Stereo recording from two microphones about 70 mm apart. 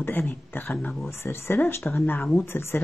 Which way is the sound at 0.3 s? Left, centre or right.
Left.